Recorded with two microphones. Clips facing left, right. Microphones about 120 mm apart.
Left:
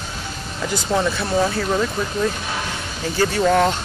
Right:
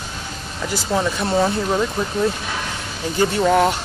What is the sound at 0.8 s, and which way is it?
Speech, 10° right (ahead or behind).